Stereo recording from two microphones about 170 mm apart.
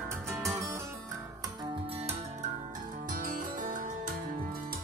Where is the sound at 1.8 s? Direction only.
35° right (ahead or behind).